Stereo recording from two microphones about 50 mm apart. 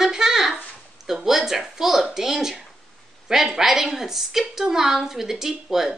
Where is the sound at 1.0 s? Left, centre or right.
Centre.